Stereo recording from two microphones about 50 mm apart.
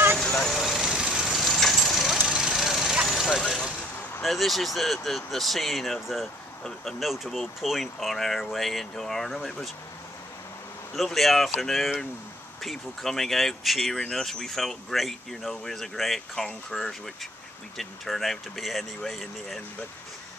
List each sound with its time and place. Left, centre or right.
0.2 s vehicle: centre
0.5 s vehicle: centre
1.2 s vehicle: centre
2.2 s vehicle: centre
4.2 s speech: centre
6.6 s speech: centre
11.0 s speech: centre